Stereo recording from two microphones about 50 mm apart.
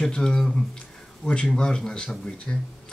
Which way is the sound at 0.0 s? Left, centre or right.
Centre.